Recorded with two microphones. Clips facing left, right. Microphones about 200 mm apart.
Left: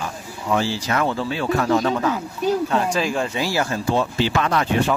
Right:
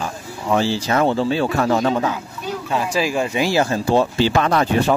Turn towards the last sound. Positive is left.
turn(degrees=-40)  # may be behind; listen again after turning